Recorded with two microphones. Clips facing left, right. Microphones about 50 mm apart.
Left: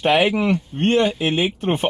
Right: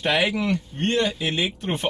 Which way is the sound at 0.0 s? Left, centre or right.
Left.